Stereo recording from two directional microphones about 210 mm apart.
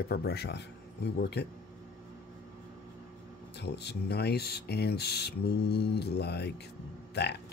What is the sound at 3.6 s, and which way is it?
Speech, 50° left (ahead or behind).